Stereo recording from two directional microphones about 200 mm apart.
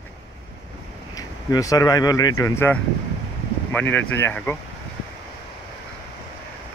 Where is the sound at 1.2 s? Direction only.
20° left (ahead or behind).